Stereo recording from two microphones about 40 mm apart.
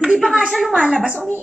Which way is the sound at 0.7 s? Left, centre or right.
Right.